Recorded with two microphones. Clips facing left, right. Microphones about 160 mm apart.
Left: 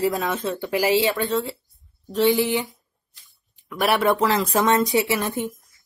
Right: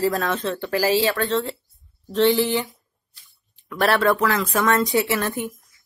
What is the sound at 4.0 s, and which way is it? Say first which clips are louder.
Speech: even; 20° left (ahead or behind).